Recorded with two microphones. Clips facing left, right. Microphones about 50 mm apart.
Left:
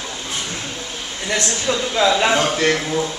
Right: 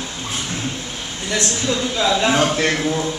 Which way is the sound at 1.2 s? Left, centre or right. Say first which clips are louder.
Even; left.